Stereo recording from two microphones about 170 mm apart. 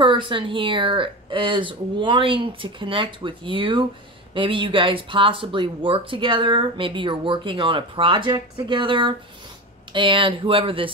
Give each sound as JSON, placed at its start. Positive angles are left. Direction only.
{"t": 0.0, "sound": "speech", "side_deg": -30}